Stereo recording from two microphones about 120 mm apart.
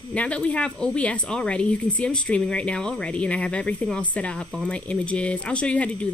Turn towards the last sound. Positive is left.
turn(degrees=10)  # may be behind; listen again after turning